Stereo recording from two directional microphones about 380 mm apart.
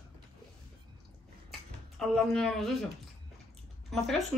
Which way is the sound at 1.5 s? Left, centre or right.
Centre.